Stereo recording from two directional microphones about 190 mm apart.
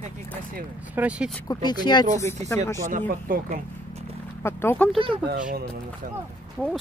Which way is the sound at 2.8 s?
45° right (ahead or behind).